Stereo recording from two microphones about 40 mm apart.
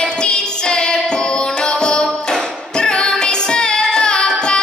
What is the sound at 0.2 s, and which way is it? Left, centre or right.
Music, left.